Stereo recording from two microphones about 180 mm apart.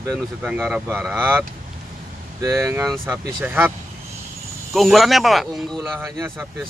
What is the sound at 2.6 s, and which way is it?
Speech, centre (ahead or behind).